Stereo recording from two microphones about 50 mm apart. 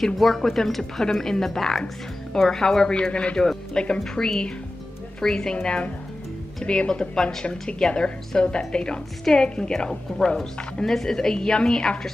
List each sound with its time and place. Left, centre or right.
0.0 s a woman's voice: centre